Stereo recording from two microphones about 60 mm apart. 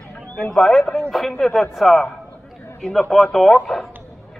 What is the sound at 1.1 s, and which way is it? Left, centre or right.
A man's voice, centre.